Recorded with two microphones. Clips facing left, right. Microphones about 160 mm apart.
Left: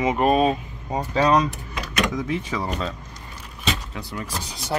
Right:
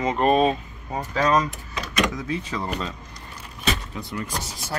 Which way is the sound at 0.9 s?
20° left (ahead or behind).